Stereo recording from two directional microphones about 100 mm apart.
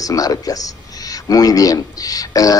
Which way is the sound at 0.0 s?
35° left (ahead or behind).